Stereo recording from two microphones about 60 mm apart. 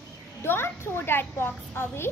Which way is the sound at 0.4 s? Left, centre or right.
Left.